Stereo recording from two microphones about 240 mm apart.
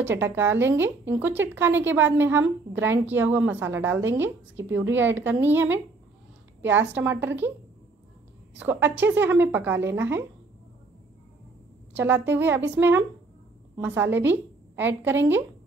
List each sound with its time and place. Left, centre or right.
0.0 s a woman's voice: centre
8.5 s a woman's voice: centre
11.9 s a woman's voice: centre
13.7 s a woman's voice: centre